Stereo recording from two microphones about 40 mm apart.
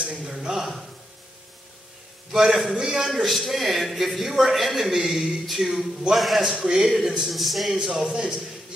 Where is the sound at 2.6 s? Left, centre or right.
Centre.